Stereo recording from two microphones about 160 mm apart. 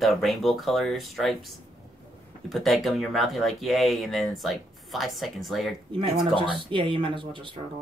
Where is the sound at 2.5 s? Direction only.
Centre (ahead or behind).